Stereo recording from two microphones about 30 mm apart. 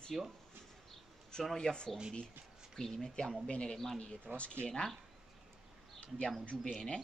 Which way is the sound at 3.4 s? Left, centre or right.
Left.